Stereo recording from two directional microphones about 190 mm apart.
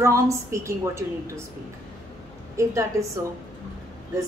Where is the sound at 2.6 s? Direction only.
15° right (ahead or behind).